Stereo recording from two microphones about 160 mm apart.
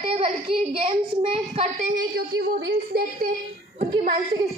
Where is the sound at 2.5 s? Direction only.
65° right (ahead or behind).